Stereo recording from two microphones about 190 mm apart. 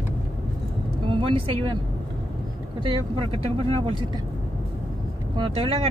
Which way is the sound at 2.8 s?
30° right (ahead or behind).